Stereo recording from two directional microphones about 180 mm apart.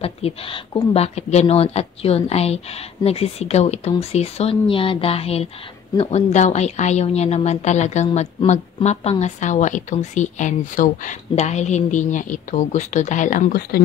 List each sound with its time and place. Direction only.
0.0 s speech: 35° left (ahead or behind); by 13.8 s 60° left (ahead or behind)